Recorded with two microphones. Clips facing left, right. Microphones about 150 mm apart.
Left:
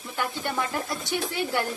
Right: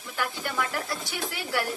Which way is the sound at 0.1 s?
20° left (ahead or behind).